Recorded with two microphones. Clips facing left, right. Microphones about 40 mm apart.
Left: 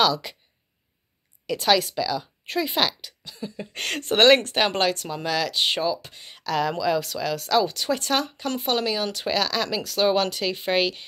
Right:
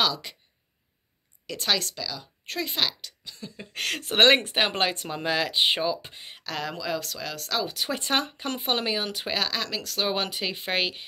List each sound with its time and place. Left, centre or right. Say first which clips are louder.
0.0 s speech: left 5 dB; centre
1.5 s speech: left 7 dB; centre
4.2 s speech: left 2 dB; centre
4.9 s speech: left 1 dB; right; by 8.0 s centre
8.0 s speech: left 2 dB; right; by 10.1 s centre
10.1 s speech: left 5 dB; centre